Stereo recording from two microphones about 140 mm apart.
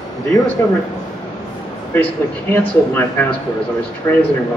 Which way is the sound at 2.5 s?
15° left (ahead or behind).